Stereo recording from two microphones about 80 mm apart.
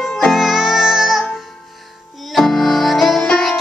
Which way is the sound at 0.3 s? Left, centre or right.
Centre.